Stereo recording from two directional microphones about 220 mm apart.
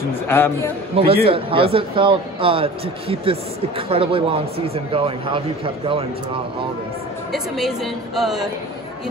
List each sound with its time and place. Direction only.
0.3 s a man's voice: 10° left (ahead or behind)
1.0 s speech: 25° right (ahead or behind)
7.3 s speech: centre (ahead or behind)